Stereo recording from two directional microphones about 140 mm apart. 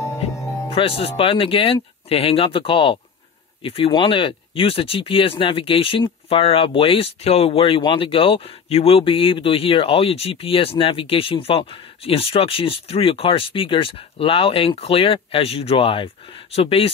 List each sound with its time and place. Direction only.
0.0 s music: 20° left (ahead or behind)
0.7 s speech: 40° left (ahead or behind)